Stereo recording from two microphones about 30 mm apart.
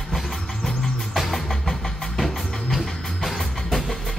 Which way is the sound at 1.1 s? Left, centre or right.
Centre.